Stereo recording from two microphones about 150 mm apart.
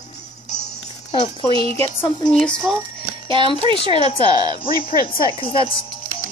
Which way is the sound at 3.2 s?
35° right (ahead or behind).